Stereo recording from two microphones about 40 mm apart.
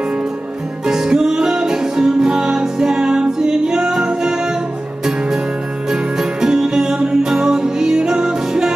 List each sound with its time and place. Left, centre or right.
0.8 s music: centre
5.9 s music: centre